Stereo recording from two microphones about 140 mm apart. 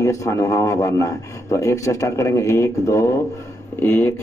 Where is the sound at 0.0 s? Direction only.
20° left (ahead or behind).